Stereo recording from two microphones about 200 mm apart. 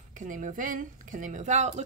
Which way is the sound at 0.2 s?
40° right (ahead or behind).